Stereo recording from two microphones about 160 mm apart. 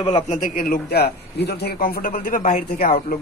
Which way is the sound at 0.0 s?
35° left (ahead or behind).